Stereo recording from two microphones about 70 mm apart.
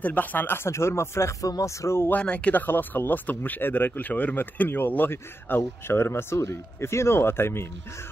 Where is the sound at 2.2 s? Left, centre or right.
Centre.